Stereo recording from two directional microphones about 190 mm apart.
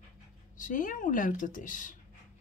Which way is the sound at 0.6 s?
45° left (ahead or behind).